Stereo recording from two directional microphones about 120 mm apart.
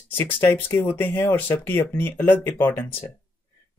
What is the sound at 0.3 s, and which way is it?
Speech, 15° left (ahead or behind).